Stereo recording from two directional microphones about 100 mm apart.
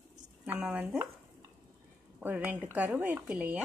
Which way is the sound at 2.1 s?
15° right (ahead or behind).